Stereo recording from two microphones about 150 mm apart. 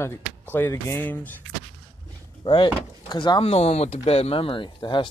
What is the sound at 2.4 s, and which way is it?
Speech, 30° left (ahead or behind).